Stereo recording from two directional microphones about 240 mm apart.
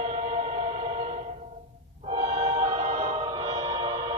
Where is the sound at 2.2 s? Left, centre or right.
Right.